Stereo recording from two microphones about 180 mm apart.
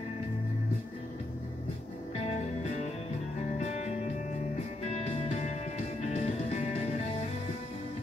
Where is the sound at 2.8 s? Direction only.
35° left (ahead or behind).